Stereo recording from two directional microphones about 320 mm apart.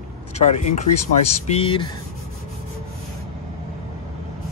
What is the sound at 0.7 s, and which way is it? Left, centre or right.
Speech, left.